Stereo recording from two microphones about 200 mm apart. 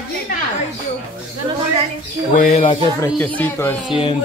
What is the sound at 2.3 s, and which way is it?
Speech, 40° left (ahead or behind).